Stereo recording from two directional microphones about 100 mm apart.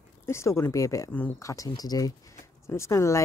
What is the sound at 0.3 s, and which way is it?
A woman's voice, 25° left (ahead or behind).